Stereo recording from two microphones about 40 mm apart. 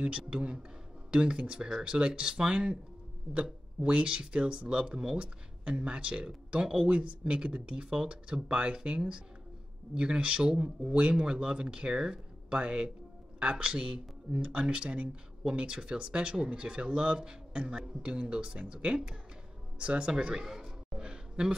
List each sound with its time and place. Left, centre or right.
0.3 s speech: right
3.8 s speech: right
20.4 s a sound: centre